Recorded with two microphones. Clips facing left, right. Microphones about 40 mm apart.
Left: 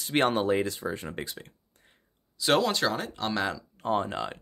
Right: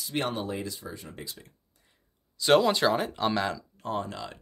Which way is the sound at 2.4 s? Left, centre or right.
Centre.